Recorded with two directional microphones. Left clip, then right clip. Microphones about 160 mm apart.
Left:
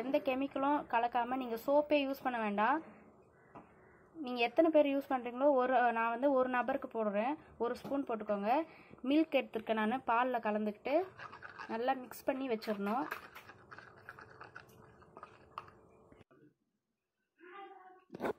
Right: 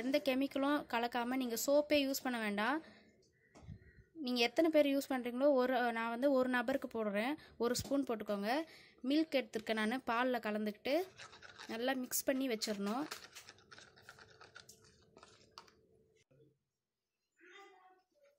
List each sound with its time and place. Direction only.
0.1 s a woman's voice: 60° right (ahead or behind)
4.2 s a woman's voice: 50° right (ahead or behind)